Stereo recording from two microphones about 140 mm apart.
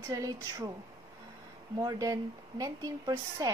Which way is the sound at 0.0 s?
25° right (ahead or behind).